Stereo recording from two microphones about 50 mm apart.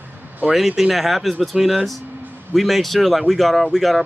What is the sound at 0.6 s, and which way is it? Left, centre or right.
Speech, centre.